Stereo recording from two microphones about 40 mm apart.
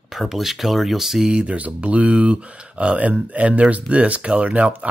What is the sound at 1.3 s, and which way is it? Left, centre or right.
Speech, right.